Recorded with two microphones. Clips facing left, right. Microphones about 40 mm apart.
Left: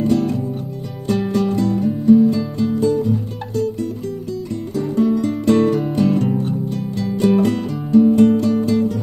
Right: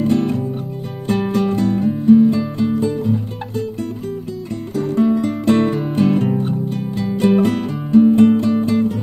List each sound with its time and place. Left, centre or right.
0.0 s music: right
4.9 s music: right